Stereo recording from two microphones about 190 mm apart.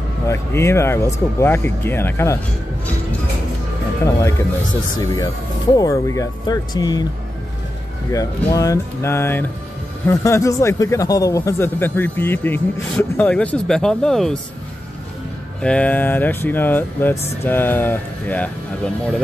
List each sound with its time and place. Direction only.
0.3 s speech: 15° left (ahead or behind)
4.0 s speech: 15° left (ahead or behind)
8.1 s speech: 15° left (ahead or behind)
15.6 s speech: 5° left (ahead or behind)